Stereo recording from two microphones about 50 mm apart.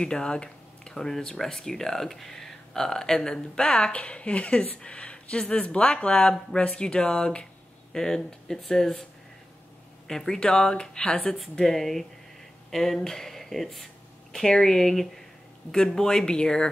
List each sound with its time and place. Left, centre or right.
0.0 s speech: centre
10.0 s speech: centre
11.6 s speech: centre